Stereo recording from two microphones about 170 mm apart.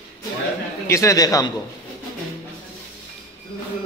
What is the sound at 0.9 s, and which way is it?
Speech, 20° left (ahead or behind).